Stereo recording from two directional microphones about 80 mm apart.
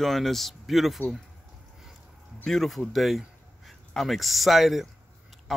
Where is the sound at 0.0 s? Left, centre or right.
Centre.